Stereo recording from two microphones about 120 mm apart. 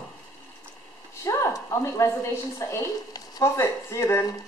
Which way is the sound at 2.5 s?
25° left (ahead or behind).